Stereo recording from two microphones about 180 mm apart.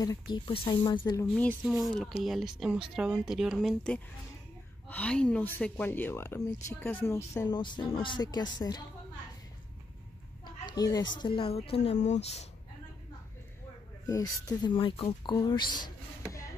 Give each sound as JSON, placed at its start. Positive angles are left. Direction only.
{"t": 0.0, "sound": "speech", "side_deg": 20}
{"t": 1.6, "sound": "speech", "side_deg": 0}
{"t": 10.6, "sound": "speech", "side_deg": 20}
{"t": 14.0, "sound": "speech", "side_deg": 20}